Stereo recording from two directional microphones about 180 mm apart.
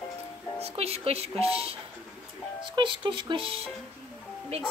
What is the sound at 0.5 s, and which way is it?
Speech, 35° right (ahead or behind).